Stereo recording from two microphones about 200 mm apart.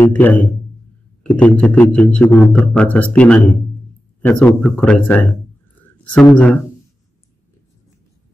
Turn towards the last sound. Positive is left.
turn(degrees=5)  # may be behind; listen again after turning